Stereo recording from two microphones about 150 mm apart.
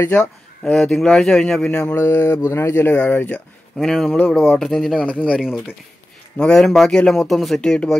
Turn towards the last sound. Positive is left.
turn(degrees=5)  # may be behind; listen again after turning